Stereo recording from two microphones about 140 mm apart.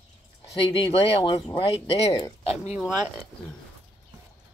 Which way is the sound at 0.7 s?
40° left (ahead or behind).